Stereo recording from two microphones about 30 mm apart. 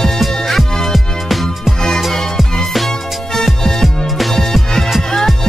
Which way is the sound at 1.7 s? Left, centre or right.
Centre.